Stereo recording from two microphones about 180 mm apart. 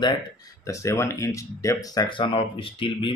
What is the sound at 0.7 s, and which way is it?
Speech, 15° left (ahead or behind).